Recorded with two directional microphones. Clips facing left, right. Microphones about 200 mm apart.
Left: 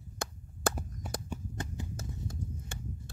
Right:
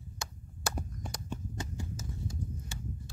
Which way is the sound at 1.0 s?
5° left (ahead or behind).